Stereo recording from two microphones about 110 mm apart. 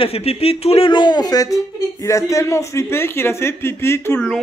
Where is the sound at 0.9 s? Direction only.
40° left (ahead or behind); by 4.2 s 20° left (ahead or behind).